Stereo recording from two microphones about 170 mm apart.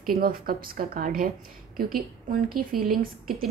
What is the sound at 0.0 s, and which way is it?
A woman's voice, 60° right (ahead or behind).